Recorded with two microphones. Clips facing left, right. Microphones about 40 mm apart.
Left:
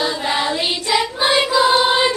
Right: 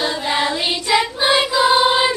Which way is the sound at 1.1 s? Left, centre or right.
Centre.